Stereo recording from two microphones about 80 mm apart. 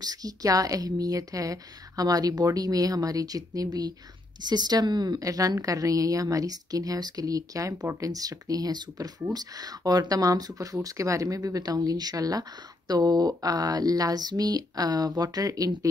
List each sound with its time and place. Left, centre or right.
0.0 s speech: right
4.4 s a woman's voice: right